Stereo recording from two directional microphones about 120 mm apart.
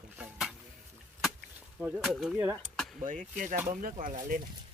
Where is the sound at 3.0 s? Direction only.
90° right.